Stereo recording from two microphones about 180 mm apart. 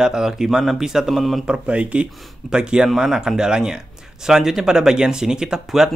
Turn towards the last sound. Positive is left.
turn(degrees=-5)  # may be behind; listen again after turning